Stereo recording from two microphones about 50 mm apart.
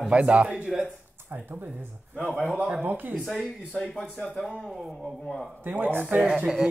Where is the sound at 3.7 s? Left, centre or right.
Centre.